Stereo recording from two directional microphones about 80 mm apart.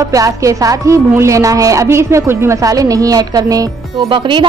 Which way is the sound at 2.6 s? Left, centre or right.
Right.